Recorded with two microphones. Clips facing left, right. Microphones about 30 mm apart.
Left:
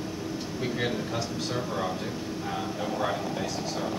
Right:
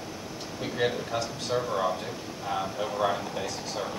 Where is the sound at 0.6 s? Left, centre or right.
Centre.